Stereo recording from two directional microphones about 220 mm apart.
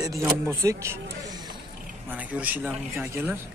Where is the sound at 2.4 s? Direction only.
5° right (ahead or behind).